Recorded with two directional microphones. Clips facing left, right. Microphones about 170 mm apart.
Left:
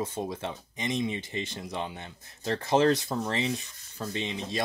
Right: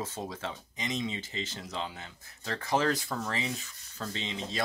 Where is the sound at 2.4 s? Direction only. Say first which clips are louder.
Left 6 dB; 25° left (ahead or behind).